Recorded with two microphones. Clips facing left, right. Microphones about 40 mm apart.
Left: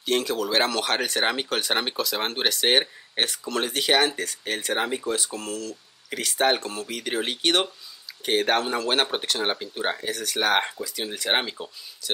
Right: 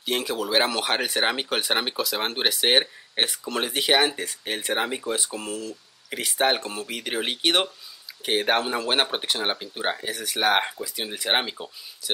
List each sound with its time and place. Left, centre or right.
0.0 s speech: centre